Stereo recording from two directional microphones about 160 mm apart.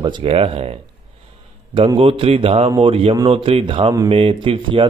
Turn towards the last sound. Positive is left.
turn(degrees=-30)  # may be behind; listen again after turning